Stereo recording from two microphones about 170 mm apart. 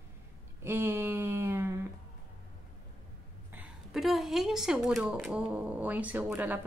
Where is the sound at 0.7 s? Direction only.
15° right (ahead or behind).